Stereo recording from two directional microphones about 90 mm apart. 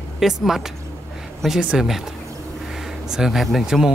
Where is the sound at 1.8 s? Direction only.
5° right (ahead or behind).